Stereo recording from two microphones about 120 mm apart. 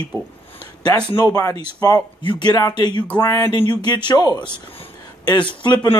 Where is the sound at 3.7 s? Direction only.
40° left (ahead or behind).